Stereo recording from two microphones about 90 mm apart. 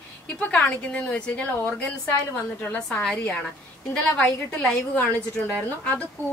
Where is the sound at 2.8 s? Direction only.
5° left (ahead or behind).